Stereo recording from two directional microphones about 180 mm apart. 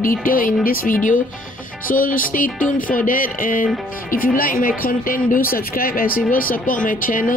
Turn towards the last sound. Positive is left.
turn(degrees=50)  # may be behind; listen again after turning